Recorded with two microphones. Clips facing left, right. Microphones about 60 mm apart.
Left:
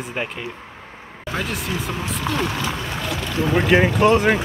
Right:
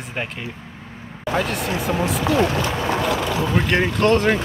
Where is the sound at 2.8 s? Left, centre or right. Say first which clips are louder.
Right 6 dB; right.